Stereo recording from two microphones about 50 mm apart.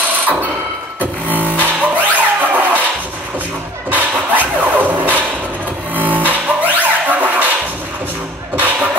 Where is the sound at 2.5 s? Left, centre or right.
Right.